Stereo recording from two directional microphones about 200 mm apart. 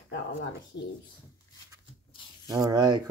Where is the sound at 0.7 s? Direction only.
60° left (ahead or behind).